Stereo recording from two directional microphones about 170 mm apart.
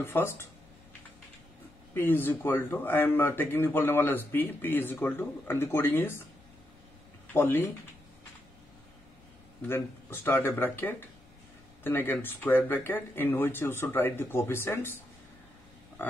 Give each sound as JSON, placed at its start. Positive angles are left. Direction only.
{"t": 0.0, "sound": "speech", "side_deg": 15}
{"t": 2.0, "sound": "speech", "side_deg": 10}
{"t": 7.3, "sound": "speech", "side_deg": 15}
{"t": 9.6, "sound": "speech", "side_deg": 10}
{"t": 16.0, "sound": "a sound", "side_deg": 10}